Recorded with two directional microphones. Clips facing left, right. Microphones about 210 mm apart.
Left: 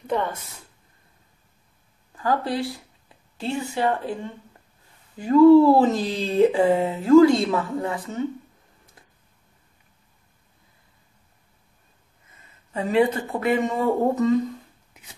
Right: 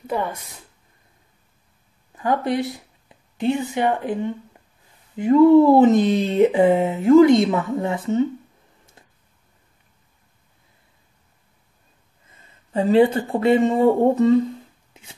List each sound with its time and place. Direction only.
0.0 s speech: 10° right (ahead or behind)
2.1 s speech: 20° right (ahead or behind)
9.0 s a sound: 25° right (ahead or behind)
12.7 s speech: 30° right (ahead or behind)
15.0 s chopping: 25° right (ahead or behind)